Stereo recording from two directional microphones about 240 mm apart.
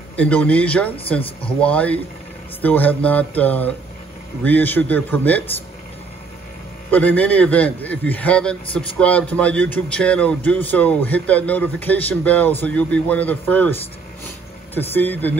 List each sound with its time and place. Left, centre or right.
0.1 s a man's voice: centre
6.9 s a man's voice: centre